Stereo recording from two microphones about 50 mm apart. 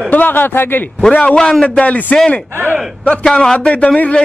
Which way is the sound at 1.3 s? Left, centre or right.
Centre.